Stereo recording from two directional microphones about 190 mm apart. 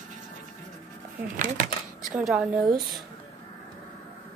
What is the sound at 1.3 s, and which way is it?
Speech, 45° right (ahead or behind).